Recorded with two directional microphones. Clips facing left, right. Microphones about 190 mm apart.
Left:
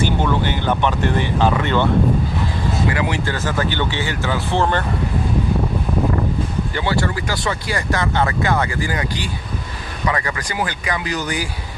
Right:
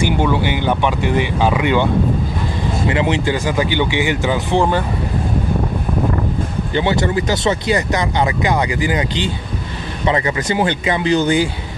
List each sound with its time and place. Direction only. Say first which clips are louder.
0.0 s speech: right 2 dB; 10° right (ahead or behind)
2.9 s speech: right 4 dB; 20° right (ahead or behind)
6.7 s speech: right 7 dB; 20° right (ahead or behind)